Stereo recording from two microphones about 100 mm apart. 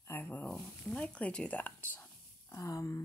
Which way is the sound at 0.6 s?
10° left (ahead or behind).